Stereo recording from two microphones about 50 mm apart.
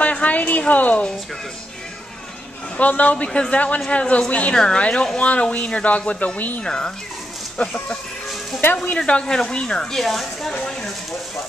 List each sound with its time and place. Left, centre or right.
0.0 s a sound: left
2.8 s speech: left
6.6 s speech: centre
9.2 s speech: centre
9.9 s speech: centre